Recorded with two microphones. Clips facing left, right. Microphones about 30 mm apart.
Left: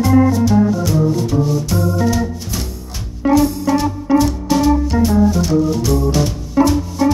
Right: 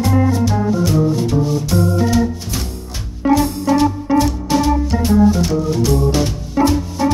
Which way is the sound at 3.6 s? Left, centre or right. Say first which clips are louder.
Right 2 dB; centre.